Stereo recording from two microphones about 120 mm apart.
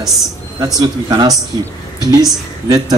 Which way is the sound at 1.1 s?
30° right (ahead or behind).